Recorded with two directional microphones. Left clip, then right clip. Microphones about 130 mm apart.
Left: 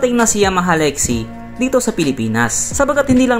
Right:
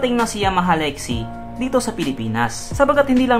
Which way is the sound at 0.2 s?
45° left (ahead or behind).